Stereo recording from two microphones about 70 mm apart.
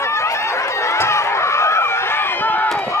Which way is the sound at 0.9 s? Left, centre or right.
Left.